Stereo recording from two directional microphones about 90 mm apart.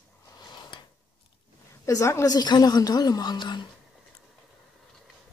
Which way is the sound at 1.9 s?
35° left (ahead or behind).